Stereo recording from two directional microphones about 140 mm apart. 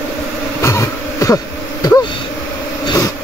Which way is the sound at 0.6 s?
20° left (ahead or behind).